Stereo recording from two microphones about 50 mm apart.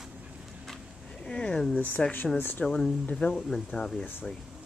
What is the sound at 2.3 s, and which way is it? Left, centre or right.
Speech, left.